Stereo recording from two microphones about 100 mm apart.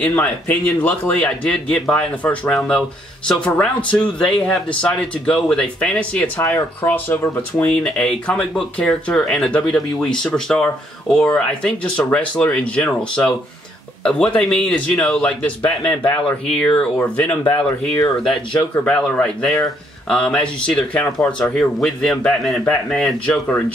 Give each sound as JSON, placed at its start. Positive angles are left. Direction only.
{"t": 0.0, "sound": "speech", "side_deg": 15}
{"t": 17.4, "sound": "speech", "side_deg": 30}
{"t": 18.9, "sound": "speech", "side_deg": 10}